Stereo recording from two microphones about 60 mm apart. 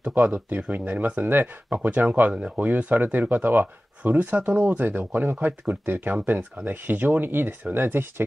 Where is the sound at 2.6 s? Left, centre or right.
Right.